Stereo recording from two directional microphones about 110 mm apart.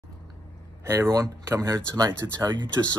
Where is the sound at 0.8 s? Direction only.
25° right (ahead or behind).